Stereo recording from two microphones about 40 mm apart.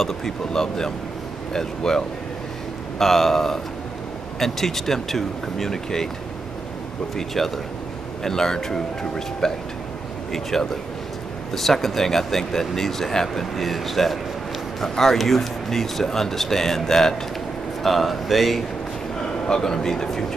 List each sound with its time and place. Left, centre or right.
0.5 s speech: centre
7.2 s speech: centre
19.4 s speech: centre